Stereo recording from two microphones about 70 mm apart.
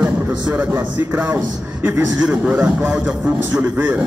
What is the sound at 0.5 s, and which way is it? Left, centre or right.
A man's voice, right.